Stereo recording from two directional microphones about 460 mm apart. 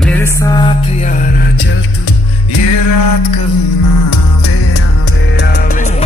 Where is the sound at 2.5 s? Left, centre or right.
Left.